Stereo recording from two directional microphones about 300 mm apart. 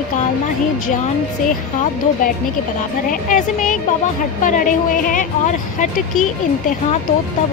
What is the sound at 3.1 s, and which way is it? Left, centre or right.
Speech, left.